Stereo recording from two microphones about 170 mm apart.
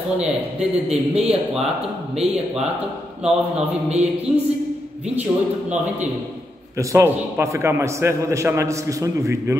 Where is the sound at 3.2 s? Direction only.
5° right (ahead or behind).